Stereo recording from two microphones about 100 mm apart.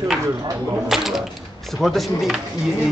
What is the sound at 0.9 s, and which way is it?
A man's voice, centre (ahead or behind).